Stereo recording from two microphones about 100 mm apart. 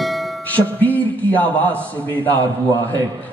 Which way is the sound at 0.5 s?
15° left (ahead or behind).